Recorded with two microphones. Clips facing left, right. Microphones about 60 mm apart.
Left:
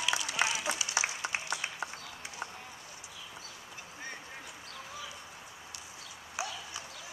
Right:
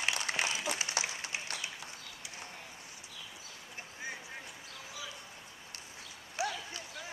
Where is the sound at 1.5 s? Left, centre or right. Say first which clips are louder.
Left 5 dB; left.